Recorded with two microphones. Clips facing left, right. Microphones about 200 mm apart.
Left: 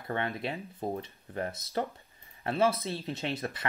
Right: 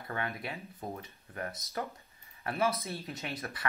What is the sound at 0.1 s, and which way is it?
Speech, 25° left (ahead or behind).